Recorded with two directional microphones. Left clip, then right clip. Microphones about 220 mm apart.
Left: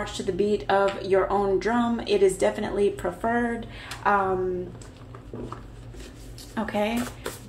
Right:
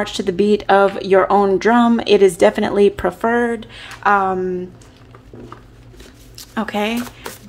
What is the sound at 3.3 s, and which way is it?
Speech, 35° right (ahead or behind).